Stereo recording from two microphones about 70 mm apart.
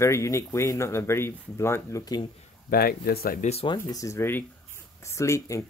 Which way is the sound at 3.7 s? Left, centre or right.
Left.